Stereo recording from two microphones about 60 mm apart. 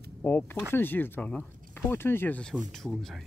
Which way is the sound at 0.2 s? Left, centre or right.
Left.